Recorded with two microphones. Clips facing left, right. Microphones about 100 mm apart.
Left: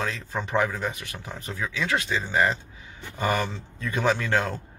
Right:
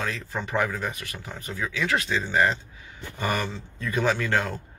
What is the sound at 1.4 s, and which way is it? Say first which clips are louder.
Speech: right 1 dB; 35° left (ahead or behind).